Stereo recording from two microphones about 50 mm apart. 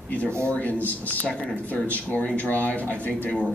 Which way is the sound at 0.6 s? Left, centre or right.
Left.